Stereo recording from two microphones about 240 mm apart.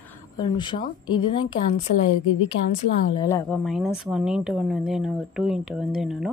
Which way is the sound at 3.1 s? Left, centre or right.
Centre.